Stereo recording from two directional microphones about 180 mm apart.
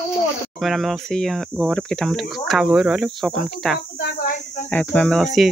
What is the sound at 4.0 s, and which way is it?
Speech, 65° left (ahead or behind).